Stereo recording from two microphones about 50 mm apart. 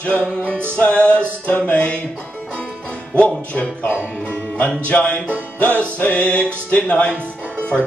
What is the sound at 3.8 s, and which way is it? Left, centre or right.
Speech, left.